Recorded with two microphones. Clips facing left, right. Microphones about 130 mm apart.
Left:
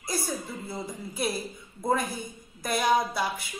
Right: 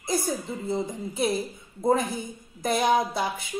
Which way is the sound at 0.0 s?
20° right (ahead or behind).